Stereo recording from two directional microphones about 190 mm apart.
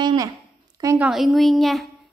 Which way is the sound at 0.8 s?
15° right (ahead or behind).